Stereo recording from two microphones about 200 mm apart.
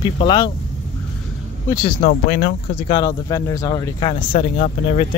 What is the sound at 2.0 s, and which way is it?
Speech, 45° left (ahead or behind).